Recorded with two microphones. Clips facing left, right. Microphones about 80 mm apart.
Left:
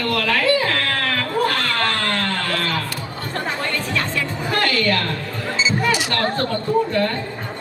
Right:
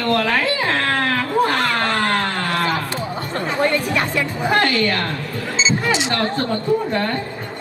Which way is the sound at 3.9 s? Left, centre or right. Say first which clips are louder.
Right 3 dB; centre.